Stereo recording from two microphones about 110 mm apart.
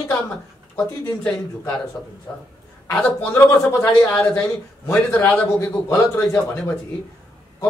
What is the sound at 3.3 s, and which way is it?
Speech, 20° left (ahead or behind).